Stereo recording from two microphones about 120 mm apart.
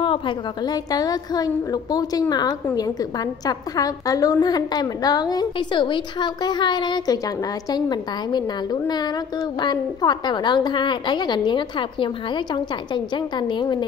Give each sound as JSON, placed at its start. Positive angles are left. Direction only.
{"t": 0.7, "sound": "a woman's voice", "side_deg": 35}